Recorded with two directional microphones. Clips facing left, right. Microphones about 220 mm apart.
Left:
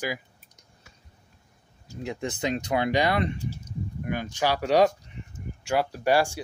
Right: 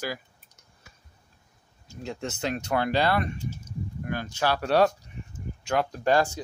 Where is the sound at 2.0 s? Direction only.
15° left (ahead or behind).